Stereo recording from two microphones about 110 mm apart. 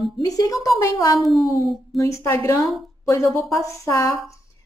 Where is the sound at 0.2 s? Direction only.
30° left (ahead or behind).